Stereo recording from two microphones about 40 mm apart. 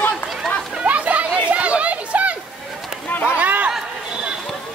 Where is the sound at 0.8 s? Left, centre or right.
Right.